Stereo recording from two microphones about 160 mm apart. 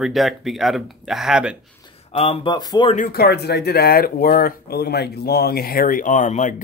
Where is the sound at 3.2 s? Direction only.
90° left.